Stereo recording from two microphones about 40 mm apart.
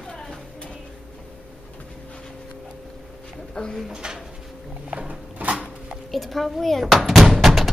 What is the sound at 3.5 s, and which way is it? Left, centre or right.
Speech, left.